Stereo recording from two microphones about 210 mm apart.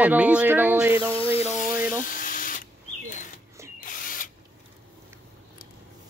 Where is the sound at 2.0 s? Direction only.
40° left (ahead or behind).